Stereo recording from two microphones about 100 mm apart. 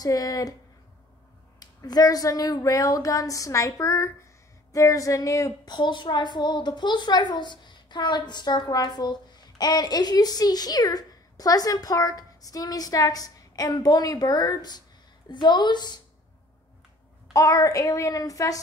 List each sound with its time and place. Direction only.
0.0 s speech: 35° left (ahead or behind)
1.6 s speech: 40° left (ahead or behind)
5.7 s a woman's voice: 50° left (ahead or behind)
17.3 s speech: 35° left (ahead or behind)